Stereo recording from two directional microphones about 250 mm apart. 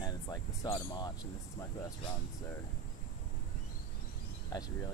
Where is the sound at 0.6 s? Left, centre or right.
Centre.